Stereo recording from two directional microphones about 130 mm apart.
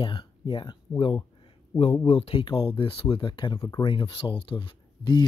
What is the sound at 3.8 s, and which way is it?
Speech, 40° left (ahead or behind).